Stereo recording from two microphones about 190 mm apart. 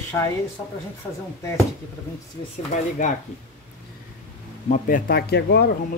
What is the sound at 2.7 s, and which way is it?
Speech, 40° left (ahead or behind).